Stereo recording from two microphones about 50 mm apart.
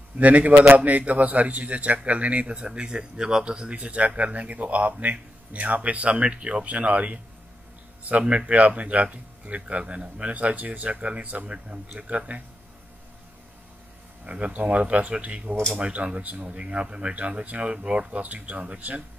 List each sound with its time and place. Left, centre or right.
0.2 s speech: right
14.2 s speech: right